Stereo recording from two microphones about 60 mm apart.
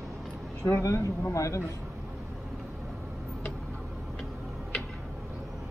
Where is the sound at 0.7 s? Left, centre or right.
Left.